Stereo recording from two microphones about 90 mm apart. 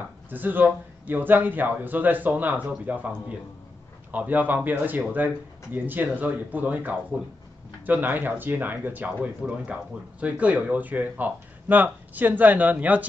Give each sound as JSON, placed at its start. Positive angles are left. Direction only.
{"t": 0.3, "sound": "speech", "side_deg": -20}